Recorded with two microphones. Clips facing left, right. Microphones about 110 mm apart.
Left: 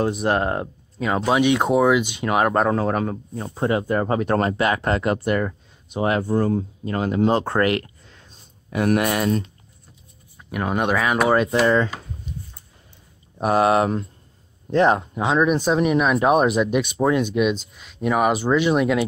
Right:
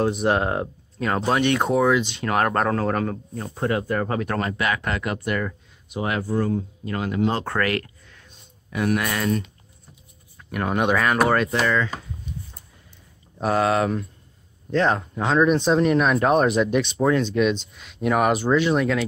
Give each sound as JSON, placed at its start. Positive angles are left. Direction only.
{"t": 0.0, "sound": "speech", "side_deg": 0}
{"t": 10.3, "sound": "speech", "side_deg": 5}
{"t": 11.6, "sound": "speech", "side_deg": 30}
{"t": 13.4, "sound": "speech", "side_deg": 20}
{"t": 15.2, "sound": "speech", "side_deg": 10}